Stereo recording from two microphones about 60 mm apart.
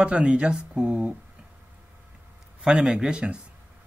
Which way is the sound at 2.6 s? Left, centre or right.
Centre.